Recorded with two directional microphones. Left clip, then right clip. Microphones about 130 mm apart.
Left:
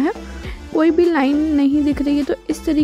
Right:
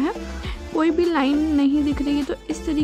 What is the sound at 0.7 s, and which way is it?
Speech, centre (ahead or behind).